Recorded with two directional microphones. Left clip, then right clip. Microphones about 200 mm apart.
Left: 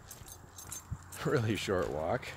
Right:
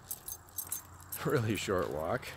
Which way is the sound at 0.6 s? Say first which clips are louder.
Right 1 dB; 25° right (ahead or behind).